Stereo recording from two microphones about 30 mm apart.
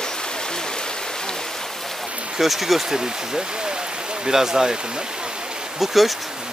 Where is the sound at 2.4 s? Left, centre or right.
Centre.